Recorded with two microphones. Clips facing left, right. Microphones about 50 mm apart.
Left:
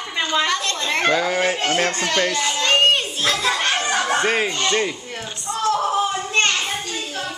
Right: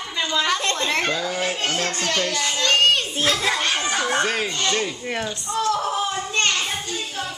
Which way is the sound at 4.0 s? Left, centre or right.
Left.